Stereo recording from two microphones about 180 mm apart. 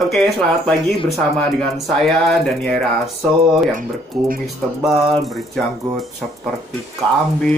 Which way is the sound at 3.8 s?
50° right (ahead or behind).